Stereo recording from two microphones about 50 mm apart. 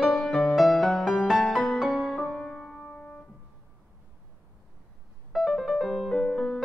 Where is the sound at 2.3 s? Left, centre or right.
Centre.